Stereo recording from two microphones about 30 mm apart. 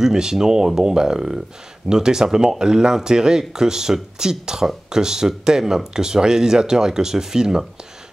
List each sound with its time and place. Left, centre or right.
0.0 s speech: centre